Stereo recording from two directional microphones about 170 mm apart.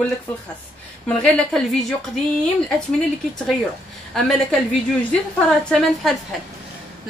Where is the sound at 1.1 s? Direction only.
5° left (ahead or behind).